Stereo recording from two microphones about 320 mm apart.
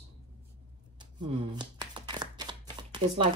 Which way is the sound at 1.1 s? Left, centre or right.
Centre.